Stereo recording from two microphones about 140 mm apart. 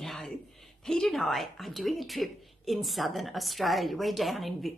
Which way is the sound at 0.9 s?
5° left (ahead or behind).